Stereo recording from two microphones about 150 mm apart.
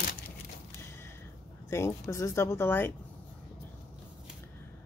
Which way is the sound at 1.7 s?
20° left (ahead or behind).